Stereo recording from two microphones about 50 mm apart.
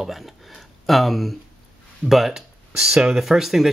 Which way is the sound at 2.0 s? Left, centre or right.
Centre.